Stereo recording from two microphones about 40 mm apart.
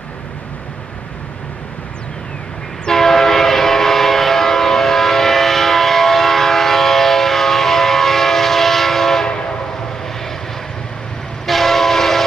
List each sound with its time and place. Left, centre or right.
2.9 s train: centre
9.3 s train: left
11.4 s train: centre